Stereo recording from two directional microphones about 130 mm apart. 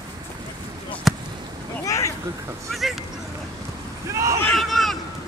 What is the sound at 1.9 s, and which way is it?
Speech, 25° left (ahead or behind).